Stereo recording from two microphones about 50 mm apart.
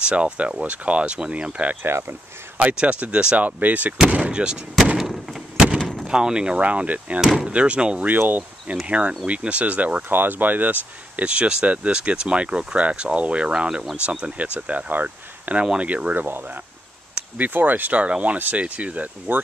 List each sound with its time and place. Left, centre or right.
0.0 s speech: right
1.8 s speech: right
2.7 s speech: right
5.8 s a sound: centre
6.0 s speech: centre
8.1 s speech: right
8.8 s speech: right
10.0 s speech: right
15.6 s speech: centre
15.9 s speech: right
16.3 s speech: right
19.3 s speech: right